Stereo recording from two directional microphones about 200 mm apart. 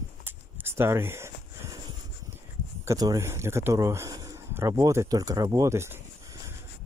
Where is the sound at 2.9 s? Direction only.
15° right (ahead or behind).